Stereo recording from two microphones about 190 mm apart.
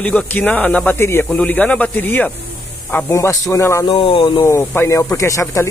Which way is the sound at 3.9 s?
30° left (ahead or behind).